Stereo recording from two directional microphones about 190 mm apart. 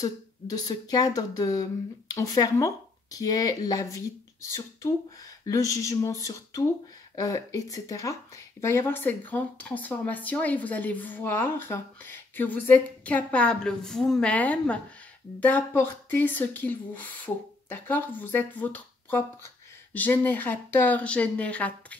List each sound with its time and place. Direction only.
0.0 s speech: 20° left (ahead or behind)